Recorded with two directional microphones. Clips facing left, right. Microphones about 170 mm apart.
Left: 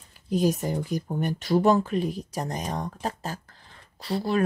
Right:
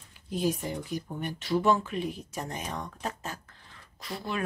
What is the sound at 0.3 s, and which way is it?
Speech, 45° left (ahead or behind).